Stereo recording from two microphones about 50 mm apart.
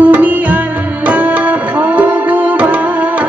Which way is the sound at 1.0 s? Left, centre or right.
Right.